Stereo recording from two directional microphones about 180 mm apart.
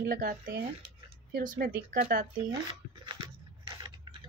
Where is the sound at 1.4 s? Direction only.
50° right (ahead or behind).